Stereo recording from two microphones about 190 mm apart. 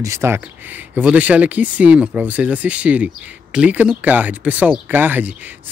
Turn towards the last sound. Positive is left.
turn(degrees=-10)  # may be behind; listen again after turning